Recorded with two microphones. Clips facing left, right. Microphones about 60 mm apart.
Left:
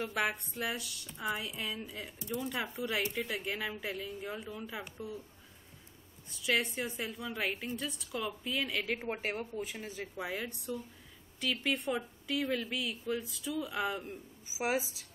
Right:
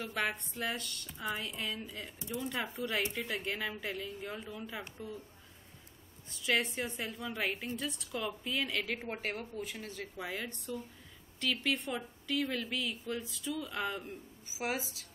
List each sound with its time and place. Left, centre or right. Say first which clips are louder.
0.0 s a woman's voice: left 2 dB; centre
6.3 s a woman's voice: even; centre
14.6 s a woman's voice: left 4 dB; centre